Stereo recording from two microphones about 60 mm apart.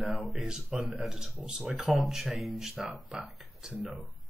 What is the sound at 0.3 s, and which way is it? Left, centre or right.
Speech, centre.